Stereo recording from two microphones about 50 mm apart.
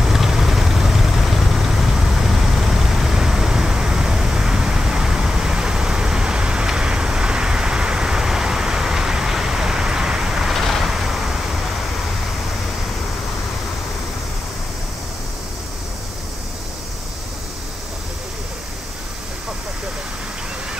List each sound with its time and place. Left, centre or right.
0.0 s vehicle: centre
10.5 s vehicle: centre